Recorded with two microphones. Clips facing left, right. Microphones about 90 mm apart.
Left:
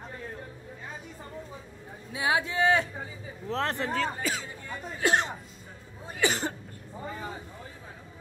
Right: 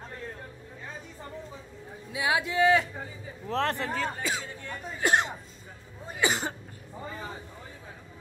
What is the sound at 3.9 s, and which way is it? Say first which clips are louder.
Speech: left 1 dB; 5° right (ahead or behind).